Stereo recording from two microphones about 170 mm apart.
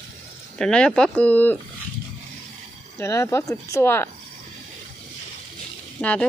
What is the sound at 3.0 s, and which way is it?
Speech, 15° left (ahead or behind).